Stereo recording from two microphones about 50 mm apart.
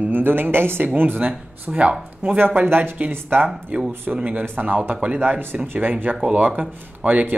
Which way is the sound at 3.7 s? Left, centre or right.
Right.